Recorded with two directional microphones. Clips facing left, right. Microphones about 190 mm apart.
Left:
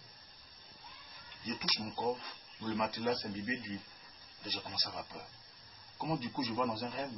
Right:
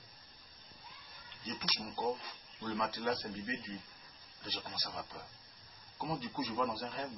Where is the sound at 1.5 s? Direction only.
10° left (ahead or behind).